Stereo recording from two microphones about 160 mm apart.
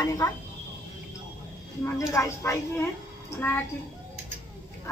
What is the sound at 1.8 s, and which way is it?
A woman's voice, 20° left (ahead or behind).